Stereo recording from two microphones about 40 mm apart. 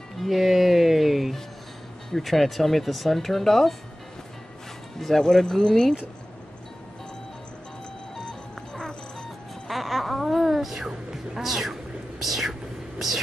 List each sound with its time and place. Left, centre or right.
0.2 s music: centre
2.1 s speech: centre
4.9 s speech: centre
8.2 s music: centre
9.7 s music: centre
10.9 s music: centre
11.4 s whispering: centre